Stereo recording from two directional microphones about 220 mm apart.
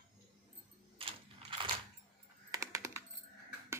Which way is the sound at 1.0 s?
25° right (ahead or behind).